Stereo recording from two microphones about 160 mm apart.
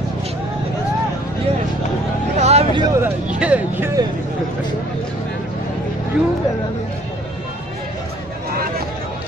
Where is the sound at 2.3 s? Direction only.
45° right (ahead or behind).